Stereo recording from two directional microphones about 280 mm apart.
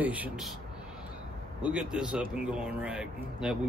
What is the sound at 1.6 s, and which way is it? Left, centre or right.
Speech, centre.